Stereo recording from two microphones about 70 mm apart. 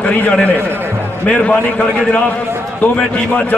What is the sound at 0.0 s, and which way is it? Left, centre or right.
A man's voice, centre.